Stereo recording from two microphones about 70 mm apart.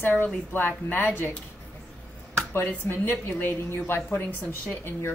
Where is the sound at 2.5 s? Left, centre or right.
Left.